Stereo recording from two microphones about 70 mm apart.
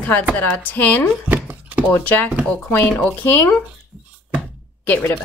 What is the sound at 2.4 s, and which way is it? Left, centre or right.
Speech, centre.